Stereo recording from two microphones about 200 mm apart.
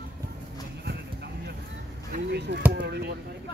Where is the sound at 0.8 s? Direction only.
55° right (ahead or behind).